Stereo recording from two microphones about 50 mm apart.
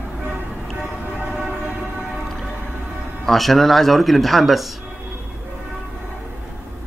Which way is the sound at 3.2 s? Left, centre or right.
Centre.